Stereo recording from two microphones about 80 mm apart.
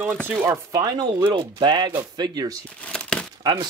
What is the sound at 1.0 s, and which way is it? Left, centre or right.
Speech, right.